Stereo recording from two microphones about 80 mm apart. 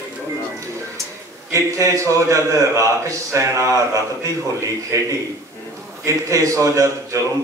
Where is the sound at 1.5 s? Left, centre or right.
Right.